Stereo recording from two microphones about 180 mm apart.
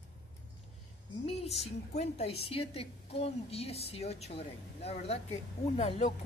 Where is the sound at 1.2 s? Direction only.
35° left (ahead or behind).